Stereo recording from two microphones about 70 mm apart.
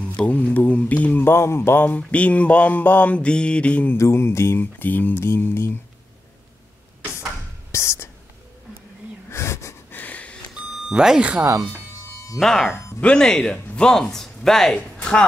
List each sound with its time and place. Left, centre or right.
0.1 s a sound: centre
1.2 s mantra: left
2.0 s mantra: centre
3.9 s mantra: left
7.7 s whispering: left
9.3 s wheeze: left
9.8 s a sound: left
10.9 s speech: centre
12.4 s speech: centre